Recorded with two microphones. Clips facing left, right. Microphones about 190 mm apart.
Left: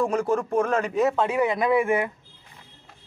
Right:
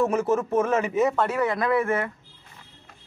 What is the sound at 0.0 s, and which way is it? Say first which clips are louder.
Speech: right 1 dB; 5° right (ahead or behind).